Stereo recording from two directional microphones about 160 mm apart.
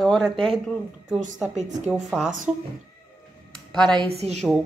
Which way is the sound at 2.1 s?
5° right (ahead or behind).